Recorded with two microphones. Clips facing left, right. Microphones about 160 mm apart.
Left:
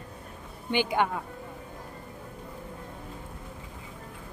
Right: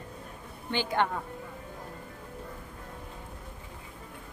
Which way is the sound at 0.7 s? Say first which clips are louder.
Left 2 dB; 15° left (ahead or behind).